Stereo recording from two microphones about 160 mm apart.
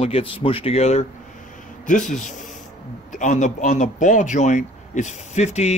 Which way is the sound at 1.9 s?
55° left (ahead or behind).